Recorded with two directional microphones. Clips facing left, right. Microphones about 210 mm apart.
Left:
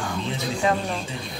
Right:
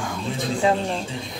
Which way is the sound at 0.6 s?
20° right (ahead or behind).